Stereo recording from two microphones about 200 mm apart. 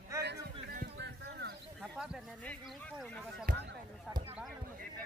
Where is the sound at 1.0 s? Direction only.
55° right (ahead or behind).